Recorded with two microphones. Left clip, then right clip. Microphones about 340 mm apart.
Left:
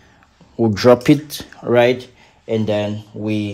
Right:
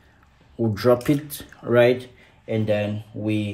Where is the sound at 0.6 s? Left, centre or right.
Left.